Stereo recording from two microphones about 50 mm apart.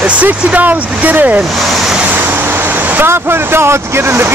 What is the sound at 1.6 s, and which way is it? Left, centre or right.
Speech, centre.